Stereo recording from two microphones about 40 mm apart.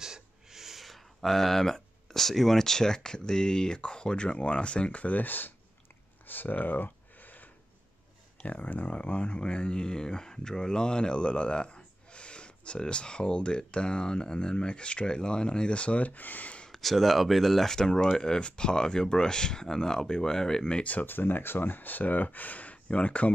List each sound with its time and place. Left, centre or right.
0.0 s speech: centre; by 5.5 s left
6.2 s a sound: left
8.5 s speech: left
8.9 s speech: left
16.7 s speech: centre
17.7 s speech: centre
20.8 s speech: left
21.1 s speech: left